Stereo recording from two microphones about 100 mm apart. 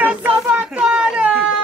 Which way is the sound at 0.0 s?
15° right (ahead or behind).